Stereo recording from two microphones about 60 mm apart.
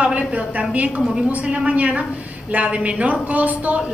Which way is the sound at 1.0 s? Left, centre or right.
Centre.